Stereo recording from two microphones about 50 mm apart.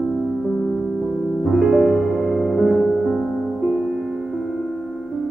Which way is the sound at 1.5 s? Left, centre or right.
Centre.